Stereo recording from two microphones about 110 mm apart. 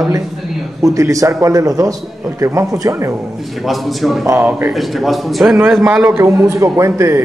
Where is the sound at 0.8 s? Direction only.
30° right (ahead or behind).